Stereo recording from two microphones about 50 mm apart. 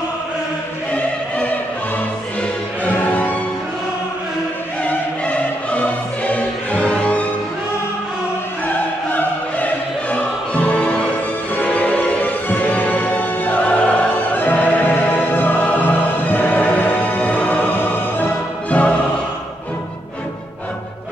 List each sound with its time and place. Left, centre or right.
2.8 s music: left
4.8 s music: left
8.6 s music: left
11.7 s music: left
13.6 s music: left
14.4 s music: left
18.7 s music: left